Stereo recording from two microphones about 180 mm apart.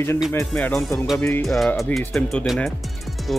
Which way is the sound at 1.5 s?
Centre (ahead or behind).